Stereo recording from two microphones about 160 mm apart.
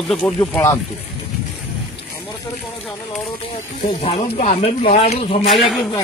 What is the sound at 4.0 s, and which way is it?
Speech, 40° left (ahead or behind).